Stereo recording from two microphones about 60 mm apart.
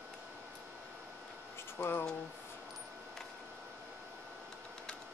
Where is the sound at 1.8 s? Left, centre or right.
Left.